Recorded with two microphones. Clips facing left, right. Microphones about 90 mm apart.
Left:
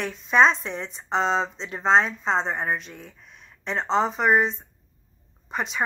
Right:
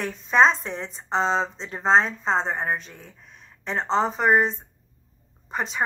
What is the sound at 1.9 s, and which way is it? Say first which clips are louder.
Speech: even; 35° right (ahead or behind).